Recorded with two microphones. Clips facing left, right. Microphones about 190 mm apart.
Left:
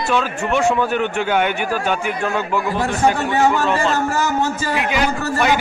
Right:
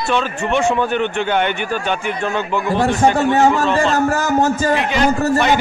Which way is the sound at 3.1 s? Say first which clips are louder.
Right 3 dB; 40° right (ahead or behind).